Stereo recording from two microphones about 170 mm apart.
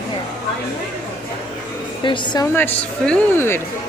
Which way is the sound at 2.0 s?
30° left (ahead or behind).